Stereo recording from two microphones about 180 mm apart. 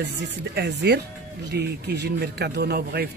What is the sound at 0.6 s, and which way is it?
A man's voice, 70° right (ahead or behind).